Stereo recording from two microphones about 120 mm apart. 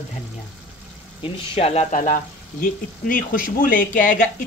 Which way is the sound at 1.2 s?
55° left (ahead or behind).